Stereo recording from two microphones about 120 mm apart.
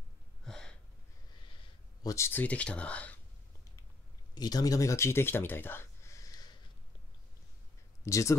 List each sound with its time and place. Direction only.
0.5 s a sound: 5° left (ahead or behind)
2.0 s speech: 20° left (ahead or behind)
4.4 s speech: 35° left (ahead or behind)
8.0 s speech: 25° left (ahead or behind)